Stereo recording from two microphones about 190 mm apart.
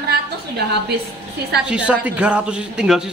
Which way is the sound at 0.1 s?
55° right (ahead or behind).